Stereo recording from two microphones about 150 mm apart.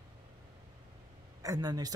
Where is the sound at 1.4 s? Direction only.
25° right (ahead or behind).